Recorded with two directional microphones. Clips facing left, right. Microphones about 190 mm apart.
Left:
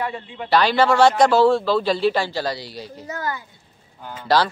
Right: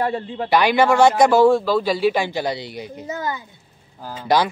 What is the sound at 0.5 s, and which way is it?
A man's voice, 15° right (ahead or behind).